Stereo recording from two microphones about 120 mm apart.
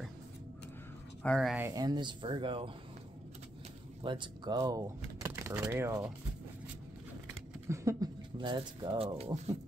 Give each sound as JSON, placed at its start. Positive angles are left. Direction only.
{"t": 1.2, "sound": "speech", "side_deg": 5}
{"t": 1.7, "sound": "speech", "side_deg": -35}
{"t": 4.0, "sound": "speech", "side_deg": -45}
{"t": 7.6, "sound": "a sound", "side_deg": -25}
{"t": 8.4, "sound": "speech", "side_deg": -40}